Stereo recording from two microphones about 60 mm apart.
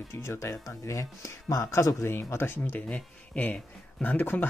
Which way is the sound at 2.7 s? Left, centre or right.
Left.